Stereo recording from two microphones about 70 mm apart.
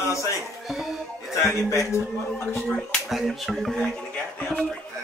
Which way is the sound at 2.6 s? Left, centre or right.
Centre.